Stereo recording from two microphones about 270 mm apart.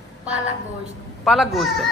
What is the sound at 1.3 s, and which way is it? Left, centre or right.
Speech, centre.